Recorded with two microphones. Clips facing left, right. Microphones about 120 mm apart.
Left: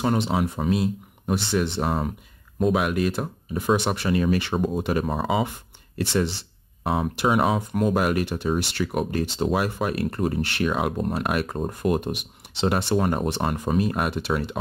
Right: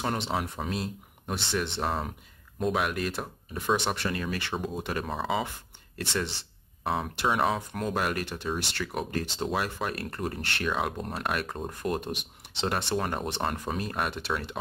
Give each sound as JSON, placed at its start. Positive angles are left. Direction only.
{"t": 0.0, "sound": "speech", "side_deg": 5}